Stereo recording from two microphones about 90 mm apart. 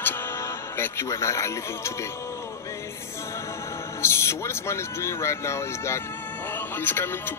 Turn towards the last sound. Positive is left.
turn(degrees=25)  # may be behind; listen again after turning